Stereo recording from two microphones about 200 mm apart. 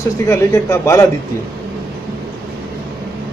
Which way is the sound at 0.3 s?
15° left (ahead or behind).